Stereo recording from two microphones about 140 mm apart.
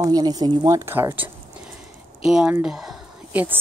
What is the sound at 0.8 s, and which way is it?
Speech, 15° right (ahead or behind).